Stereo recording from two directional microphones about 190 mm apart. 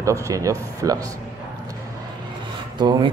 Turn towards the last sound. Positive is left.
turn(degrees=-25)  # may be behind; listen again after turning